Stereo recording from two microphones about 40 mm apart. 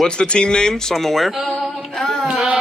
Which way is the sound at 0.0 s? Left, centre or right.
Left.